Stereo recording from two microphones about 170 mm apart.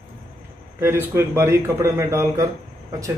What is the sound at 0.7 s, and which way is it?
A man's voice, 15° right (ahead or behind).